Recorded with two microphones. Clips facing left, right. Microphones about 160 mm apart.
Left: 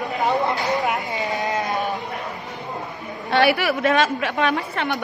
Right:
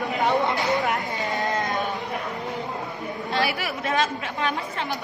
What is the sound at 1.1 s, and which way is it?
Sheep, 20° left (ahead or behind).